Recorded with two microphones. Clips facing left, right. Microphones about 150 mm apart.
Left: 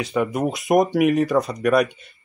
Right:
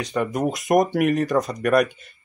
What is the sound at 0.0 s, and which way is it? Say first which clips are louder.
Speech: left 1 dB; 5° left (ahead or behind).